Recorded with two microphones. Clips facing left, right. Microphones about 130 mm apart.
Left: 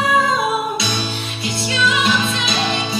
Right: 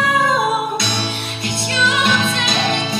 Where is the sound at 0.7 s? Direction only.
55° right (ahead or behind).